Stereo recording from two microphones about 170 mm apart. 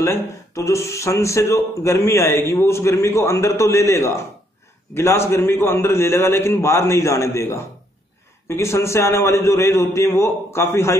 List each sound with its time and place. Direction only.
0.0 s speech: 15° left (ahead or behind)